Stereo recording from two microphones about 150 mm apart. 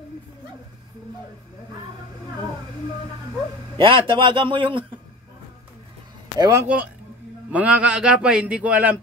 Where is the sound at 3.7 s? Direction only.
35° right (ahead or behind).